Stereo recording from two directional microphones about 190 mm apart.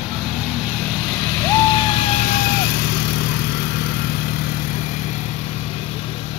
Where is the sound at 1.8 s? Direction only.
30° left (ahead or behind).